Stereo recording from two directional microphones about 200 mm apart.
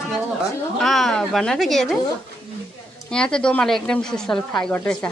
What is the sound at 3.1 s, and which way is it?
A woman's voice, 5° left (ahead or behind).